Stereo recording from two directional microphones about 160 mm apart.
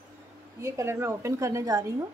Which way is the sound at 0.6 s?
15° right (ahead or behind).